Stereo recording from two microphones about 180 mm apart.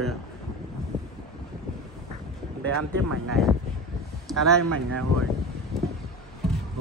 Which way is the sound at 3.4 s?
Centre (ahead or behind).